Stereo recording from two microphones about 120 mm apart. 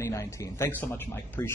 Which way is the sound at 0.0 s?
25° left (ahead or behind).